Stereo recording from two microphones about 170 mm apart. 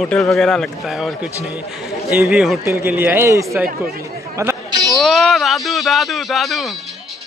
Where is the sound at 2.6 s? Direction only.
15° right (ahead or behind).